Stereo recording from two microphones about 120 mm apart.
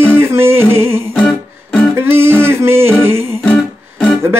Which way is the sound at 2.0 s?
20° right (ahead or behind).